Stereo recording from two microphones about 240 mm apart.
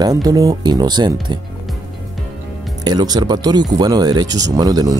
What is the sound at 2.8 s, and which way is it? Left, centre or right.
Speech, centre.